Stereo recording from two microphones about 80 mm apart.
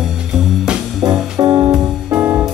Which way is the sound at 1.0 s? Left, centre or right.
Right.